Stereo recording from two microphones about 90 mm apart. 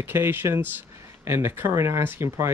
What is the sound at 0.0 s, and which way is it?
Speech, 25° right (ahead or behind).